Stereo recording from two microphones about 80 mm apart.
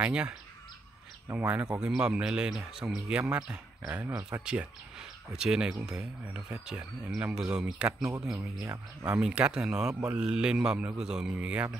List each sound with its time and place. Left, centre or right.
0.0 s speech: centre
1.4 s speech: centre
8.0 s speech: right
8.4 s speech: centre